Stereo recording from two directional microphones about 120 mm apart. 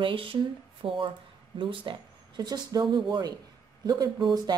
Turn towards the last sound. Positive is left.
turn(degrees=-35)  # may be behind; listen again after turning